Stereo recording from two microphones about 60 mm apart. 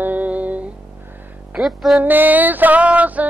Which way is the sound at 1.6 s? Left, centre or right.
Centre.